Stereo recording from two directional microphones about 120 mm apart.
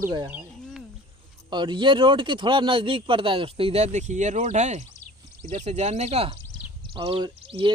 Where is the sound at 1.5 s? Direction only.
40° right (ahead or behind).